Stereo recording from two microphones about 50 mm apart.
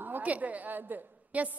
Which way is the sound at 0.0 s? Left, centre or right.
Right.